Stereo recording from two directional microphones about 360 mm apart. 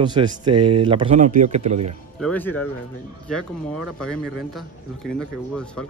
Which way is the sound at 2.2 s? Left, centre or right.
Centre.